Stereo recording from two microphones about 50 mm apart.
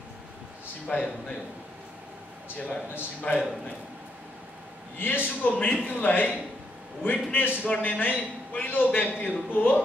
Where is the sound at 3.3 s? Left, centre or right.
Left.